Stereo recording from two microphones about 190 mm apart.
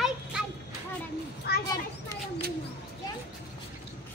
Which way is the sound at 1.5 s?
55° left (ahead or behind).